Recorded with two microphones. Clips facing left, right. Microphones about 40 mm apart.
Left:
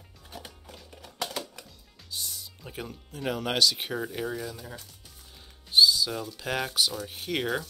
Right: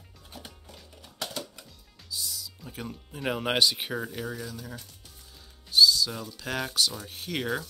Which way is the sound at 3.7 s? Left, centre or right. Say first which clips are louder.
Left 1 dB; centre.